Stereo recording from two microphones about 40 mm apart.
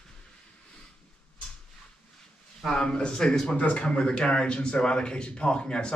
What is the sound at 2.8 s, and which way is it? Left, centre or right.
A man's voice, left.